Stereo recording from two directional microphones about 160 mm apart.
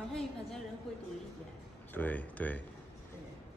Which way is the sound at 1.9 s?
10° left (ahead or behind).